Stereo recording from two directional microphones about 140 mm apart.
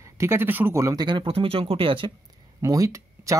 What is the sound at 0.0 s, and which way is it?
Speech, 20° right (ahead or behind).